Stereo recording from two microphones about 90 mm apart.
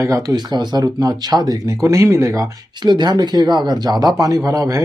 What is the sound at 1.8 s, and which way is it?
Speech, 35° right (ahead or behind).